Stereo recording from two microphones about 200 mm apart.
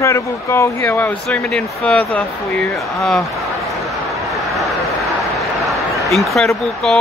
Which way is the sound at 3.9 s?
Centre (ahead or behind).